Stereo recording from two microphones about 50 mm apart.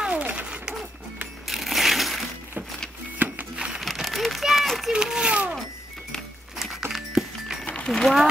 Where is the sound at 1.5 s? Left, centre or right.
Centre.